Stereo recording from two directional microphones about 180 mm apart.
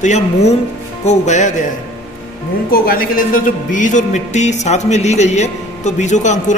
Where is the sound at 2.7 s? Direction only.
55° left (ahead or behind).